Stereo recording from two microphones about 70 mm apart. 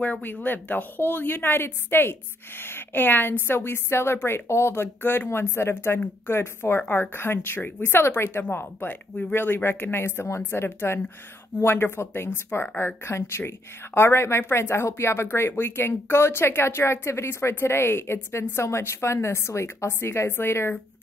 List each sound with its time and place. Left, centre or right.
0.0 s a woman's voice: left